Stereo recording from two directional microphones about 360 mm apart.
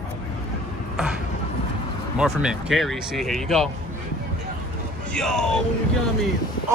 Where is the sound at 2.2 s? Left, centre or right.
Centre.